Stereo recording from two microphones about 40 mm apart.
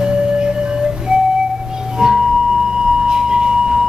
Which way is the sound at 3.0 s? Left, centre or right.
Centre.